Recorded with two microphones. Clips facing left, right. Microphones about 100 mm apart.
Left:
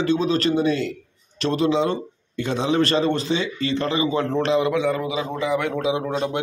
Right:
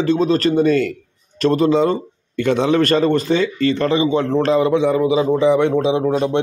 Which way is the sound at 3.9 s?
30° right (ahead or behind).